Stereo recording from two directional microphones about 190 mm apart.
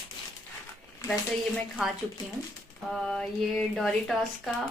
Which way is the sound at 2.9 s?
Centre (ahead or behind).